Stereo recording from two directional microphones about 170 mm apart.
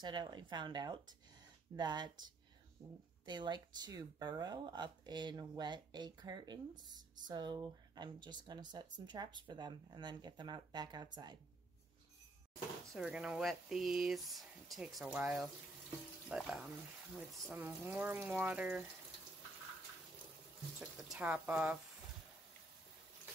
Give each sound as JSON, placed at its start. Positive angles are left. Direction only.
{"t": 0.0, "sound": "speech", "side_deg": -25}
{"t": 2.8, "sound": "speech", "side_deg": -35}
{"t": 12.9, "sound": "speech", "side_deg": -5}
{"t": 20.8, "sound": "speech", "side_deg": -5}